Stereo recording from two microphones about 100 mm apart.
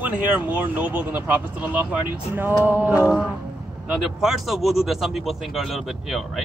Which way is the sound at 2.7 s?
20° right (ahead or behind).